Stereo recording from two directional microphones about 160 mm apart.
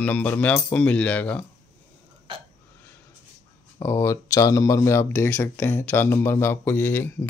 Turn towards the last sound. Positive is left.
turn(degrees=15)  # may be behind; listen again after turning